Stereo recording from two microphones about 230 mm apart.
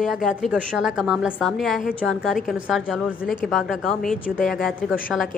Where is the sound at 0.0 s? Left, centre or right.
Centre.